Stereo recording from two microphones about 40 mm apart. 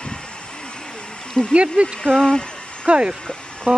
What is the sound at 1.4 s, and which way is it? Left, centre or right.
Speech, centre.